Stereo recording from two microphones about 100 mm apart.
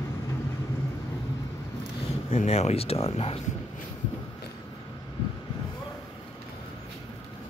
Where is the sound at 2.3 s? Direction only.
90° left.